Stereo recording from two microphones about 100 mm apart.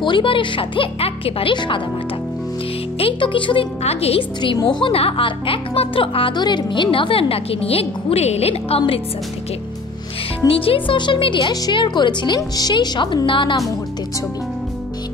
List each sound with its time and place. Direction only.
0.0 s speech: 55° left (ahead or behind)
3.0 s speech: 60° left (ahead or behind); by 4.3 s 85° left
4.6 s a woman's voice: 50° left (ahead or behind)
4.9 s speech: 70° left (ahead or behind)
10.5 s a woman's voice: 65° left (ahead or behind)